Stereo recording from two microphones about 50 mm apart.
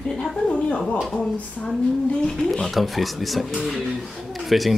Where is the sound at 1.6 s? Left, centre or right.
Centre.